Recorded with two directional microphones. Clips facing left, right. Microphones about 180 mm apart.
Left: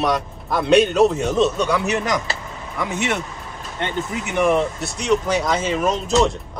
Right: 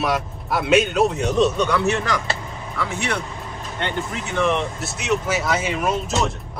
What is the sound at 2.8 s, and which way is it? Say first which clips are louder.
Speech: left 3 dB; 20° left (ahead or behind).